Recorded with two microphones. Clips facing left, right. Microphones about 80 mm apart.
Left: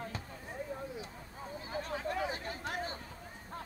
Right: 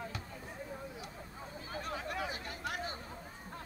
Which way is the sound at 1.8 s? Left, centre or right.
Left.